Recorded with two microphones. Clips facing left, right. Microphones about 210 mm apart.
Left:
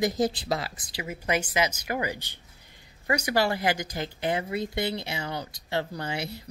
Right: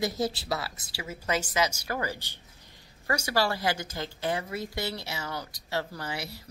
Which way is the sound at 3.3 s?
15° left (ahead or behind).